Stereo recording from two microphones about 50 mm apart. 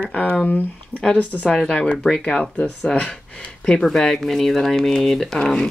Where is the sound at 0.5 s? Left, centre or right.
Left.